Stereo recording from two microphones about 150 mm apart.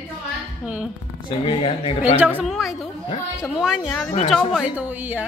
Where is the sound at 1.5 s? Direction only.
35° left (ahead or behind).